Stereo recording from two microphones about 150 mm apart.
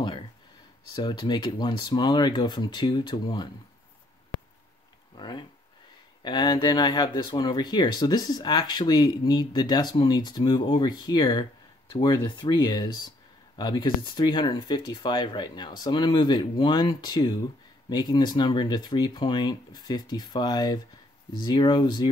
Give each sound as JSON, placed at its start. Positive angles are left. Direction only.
{"t": 0.9, "sound": "speech", "side_deg": 30}
{"t": 5.1, "sound": "speech", "side_deg": 30}